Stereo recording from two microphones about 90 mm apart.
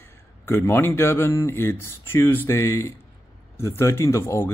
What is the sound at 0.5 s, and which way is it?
Speech, 25° left (ahead or behind).